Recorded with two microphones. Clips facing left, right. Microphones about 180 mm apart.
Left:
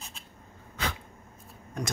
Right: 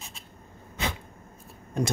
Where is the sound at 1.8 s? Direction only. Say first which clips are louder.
Right 7 dB; 25° right (ahead or behind).